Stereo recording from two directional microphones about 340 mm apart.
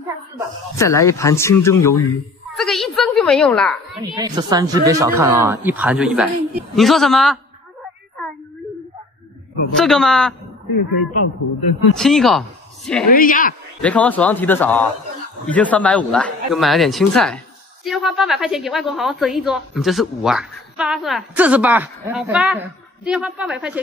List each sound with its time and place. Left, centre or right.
0.7 s speech: centre
2.5 s a sound: centre
4.0 s a woman's voice: centre
9.8 s a woman's voice: centre
10.7 s a man's voice: left
11.9 s speech: centre
13.1 s a man's voice: left
13.7 s a woman's voice: centre